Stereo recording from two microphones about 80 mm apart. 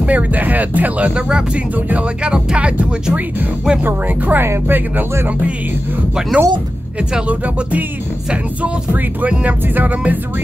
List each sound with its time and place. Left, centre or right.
0.0 s speech: centre
3.8 s music: right
6.3 s speech: centre
8.3 s music: centre